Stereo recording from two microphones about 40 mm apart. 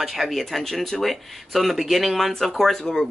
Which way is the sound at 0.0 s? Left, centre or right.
Centre.